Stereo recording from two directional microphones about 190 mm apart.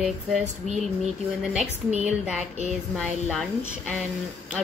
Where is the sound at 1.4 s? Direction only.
5° right (ahead or behind).